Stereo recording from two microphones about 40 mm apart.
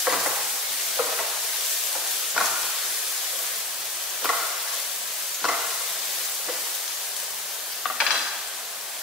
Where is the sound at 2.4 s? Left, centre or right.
Centre.